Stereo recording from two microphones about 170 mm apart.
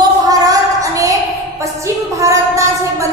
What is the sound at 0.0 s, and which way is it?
Child singing, 20° right (ahead or behind).